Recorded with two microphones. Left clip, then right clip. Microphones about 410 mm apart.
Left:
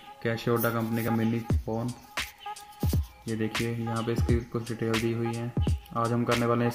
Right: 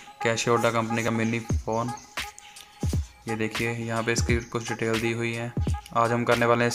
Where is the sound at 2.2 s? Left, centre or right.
Centre.